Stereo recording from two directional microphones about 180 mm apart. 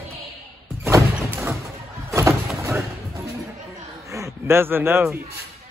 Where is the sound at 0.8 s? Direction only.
15° right (ahead or behind).